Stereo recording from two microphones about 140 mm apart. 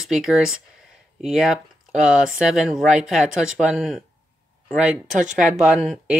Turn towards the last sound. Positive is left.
turn(degrees=0)  # may be behind; listen again after turning